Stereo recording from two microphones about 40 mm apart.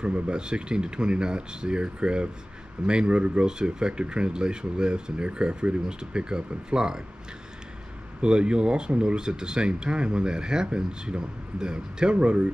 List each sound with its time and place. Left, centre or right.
0.0 s speech: right
8.2 s speech: right